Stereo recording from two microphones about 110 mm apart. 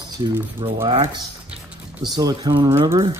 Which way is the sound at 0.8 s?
50° right (ahead or behind).